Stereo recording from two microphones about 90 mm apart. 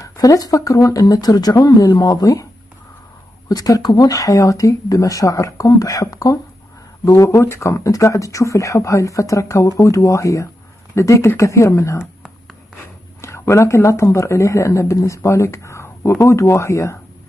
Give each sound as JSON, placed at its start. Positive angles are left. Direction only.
{"t": 0.0, "sound": "speech", "side_deg": 40}
{"t": 3.4, "sound": "speech", "side_deg": 45}
{"t": 13.2, "sound": "speech", "side_deg": 30}